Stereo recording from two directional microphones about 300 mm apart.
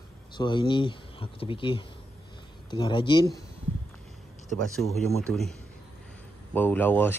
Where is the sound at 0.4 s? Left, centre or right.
Centre.